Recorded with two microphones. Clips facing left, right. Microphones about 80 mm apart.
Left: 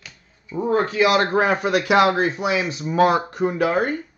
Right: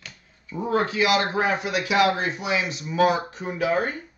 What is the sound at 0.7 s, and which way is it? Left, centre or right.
A man's voice, left.